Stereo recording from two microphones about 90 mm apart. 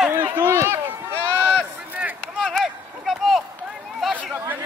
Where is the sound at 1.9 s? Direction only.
20° right (ahead or behind).